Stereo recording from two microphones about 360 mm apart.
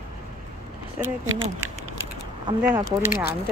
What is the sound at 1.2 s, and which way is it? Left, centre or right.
Speech, right.